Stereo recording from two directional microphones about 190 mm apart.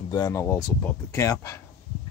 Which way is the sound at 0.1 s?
15° left (ahead or behind).